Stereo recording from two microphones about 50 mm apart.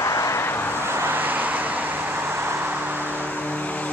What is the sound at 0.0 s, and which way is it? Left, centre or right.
Vehicle, left.